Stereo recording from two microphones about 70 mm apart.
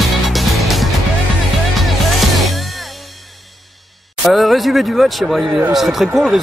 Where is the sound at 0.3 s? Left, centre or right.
Centre.